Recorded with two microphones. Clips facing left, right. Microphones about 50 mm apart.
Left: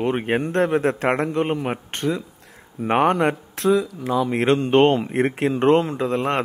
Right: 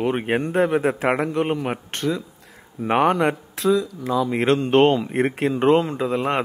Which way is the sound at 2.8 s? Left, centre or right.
Centre.